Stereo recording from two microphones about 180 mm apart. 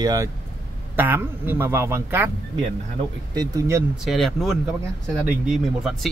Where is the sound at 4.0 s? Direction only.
Centre (ahead or behind).